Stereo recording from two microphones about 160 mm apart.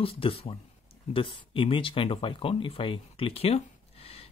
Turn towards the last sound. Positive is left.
turn(degrees=40)  # may be behind; listen again after turning